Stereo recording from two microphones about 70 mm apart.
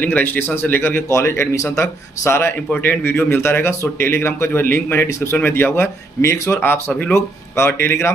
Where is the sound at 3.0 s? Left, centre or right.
Left.